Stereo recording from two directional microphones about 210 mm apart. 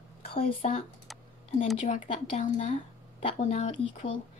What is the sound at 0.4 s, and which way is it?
Speech, 30° left (ahead or behind).